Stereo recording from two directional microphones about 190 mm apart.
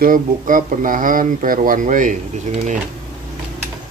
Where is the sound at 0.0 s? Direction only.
45° right (ahead or behind).